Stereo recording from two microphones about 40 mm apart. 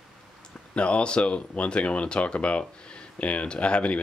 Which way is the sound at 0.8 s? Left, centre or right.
Left.